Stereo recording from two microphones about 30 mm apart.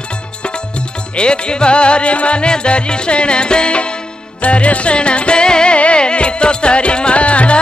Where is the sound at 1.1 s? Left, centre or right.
Left.